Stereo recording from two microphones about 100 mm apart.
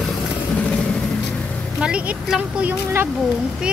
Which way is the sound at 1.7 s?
10° right (ahead or behind).